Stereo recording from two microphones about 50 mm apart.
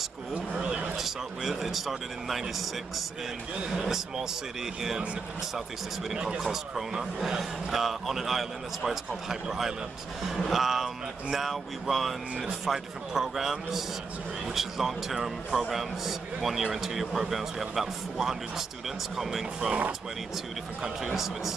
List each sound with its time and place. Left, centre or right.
0.3 s a sound: right
0.9 s speech: centre
3.8 s speech: centre
6.0 s a man's voice: centre
20.8 s a man's voice: centre